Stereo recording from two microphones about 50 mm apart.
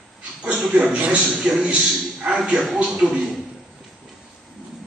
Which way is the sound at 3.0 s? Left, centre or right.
Centre.